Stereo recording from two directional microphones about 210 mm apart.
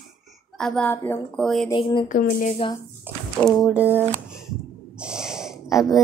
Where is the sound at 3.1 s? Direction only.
10° right (ahead or behind).